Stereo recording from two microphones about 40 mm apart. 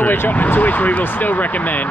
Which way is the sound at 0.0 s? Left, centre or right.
Left.